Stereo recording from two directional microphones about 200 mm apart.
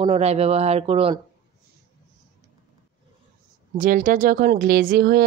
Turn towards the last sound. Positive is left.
turn(degrees=-50)  # may be behind; listen again after turning